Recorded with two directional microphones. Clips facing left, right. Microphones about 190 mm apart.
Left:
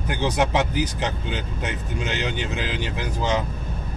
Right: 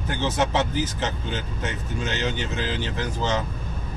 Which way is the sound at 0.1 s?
15° left (ahead or behind).